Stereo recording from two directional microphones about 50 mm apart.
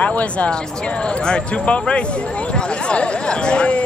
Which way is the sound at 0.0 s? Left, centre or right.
Left.